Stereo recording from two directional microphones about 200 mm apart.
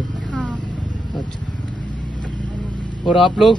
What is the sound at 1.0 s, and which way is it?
Vehicle, 20° left (ahead or behind).